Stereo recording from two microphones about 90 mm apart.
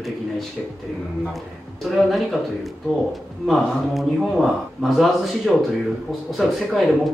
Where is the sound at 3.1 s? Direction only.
Centre (ahead or behind).